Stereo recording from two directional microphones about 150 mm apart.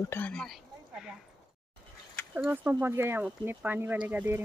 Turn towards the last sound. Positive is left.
turn(degrees=-10)  # may be behind; listen again after turning